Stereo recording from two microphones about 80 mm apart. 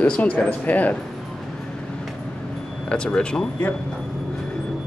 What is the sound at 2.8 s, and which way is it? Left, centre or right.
Speech, centre.